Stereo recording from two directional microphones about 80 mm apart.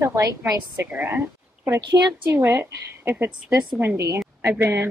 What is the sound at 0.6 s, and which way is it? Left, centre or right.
A woman's voice, right.